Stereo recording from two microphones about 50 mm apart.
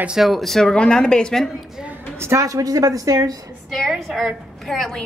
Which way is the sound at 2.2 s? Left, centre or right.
Right.